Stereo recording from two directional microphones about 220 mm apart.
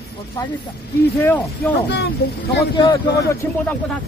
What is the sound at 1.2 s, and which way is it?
Speech, 10° left (ahead or behind).